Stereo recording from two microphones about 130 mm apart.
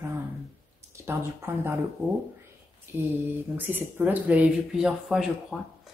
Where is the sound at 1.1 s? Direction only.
20° right (ahead or behind).